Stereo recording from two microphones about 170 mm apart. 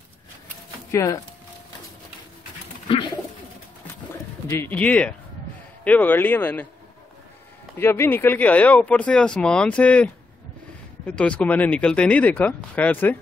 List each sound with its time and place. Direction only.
0.9 s speech: 20° left (ahead or behind)
4.6 s speech: 10° left (ahead or behind)
7.8 s speech: 15° left (ahead or behind)